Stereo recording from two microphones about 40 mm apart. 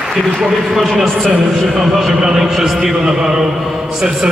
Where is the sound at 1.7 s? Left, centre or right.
Centre.